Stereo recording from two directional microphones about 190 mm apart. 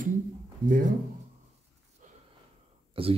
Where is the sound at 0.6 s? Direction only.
40° right (ahead or behind).